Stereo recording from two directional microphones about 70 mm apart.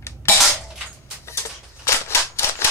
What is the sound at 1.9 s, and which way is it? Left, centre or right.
Cap gun, left.